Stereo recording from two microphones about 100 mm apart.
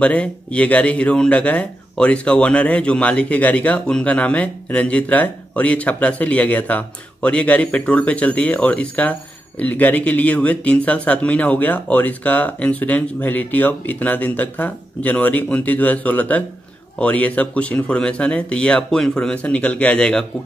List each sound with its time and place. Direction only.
0.0 s speech: 10° left (ahead or behind)